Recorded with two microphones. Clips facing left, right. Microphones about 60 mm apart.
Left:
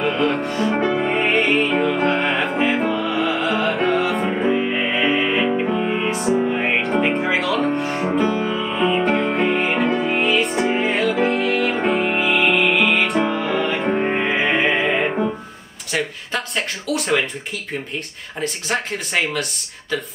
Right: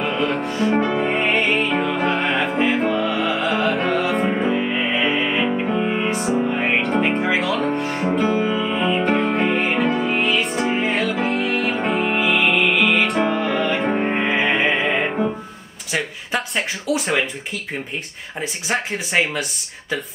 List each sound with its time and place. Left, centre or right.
0.0 s music: centre
8.3 s music: centre
8.6 s music: centre
15.9 s speech: centre
18.4 s speech: centre